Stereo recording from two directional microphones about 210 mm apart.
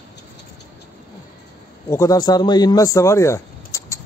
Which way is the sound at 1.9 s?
15° left (ahead or behind).